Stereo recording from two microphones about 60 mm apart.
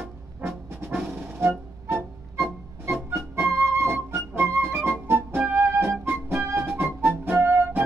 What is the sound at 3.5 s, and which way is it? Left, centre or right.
Flute, right.